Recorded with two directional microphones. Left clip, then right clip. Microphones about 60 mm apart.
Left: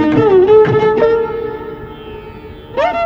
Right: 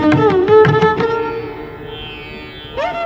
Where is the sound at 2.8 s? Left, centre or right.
Right.